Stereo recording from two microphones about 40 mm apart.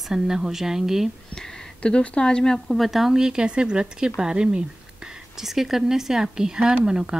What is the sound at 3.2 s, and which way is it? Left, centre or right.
Speech, right.